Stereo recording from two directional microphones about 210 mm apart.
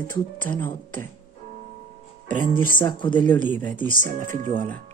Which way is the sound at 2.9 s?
20° left (ahead or behind).